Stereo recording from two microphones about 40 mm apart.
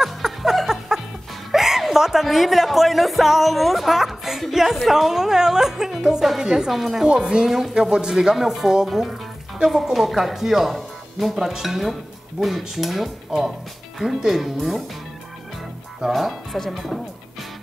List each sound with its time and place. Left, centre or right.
0.0 s music: centre
2.2 s speech: centre
6.7 s speech: centre
7.2 s speech: centre
7.4 s speech: centre
7.7 s speech: centre
16.0 s speech: centre